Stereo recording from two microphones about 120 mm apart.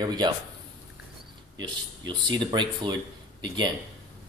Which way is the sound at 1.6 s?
40° right (ahead or behind).